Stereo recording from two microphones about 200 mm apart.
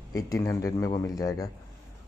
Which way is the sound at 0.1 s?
15° left (ahead or behind).